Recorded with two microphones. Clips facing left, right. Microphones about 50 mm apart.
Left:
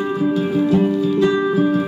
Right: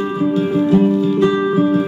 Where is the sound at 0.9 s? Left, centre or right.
Right.